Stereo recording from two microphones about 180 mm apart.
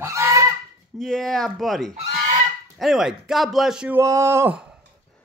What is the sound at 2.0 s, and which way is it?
Goose, 40° right (ahead or behind).